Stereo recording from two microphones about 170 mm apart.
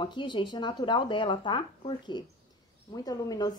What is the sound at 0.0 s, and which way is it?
A woman's voice, 25° left (ahead or behind).